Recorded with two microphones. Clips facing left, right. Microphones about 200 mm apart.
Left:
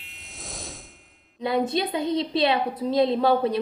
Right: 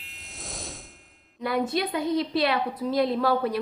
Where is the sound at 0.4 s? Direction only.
Centre (ahead or behind).